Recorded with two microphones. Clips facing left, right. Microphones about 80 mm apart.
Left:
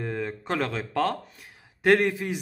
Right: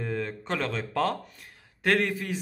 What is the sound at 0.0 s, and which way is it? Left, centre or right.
Speech, centre.